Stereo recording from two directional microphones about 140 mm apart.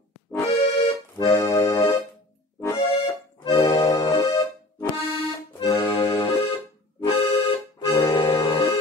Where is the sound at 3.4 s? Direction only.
35° left (ahead or behind).